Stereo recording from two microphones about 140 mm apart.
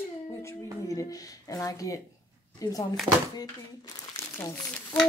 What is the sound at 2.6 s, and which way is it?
Speech, 25° left (ahead or behind).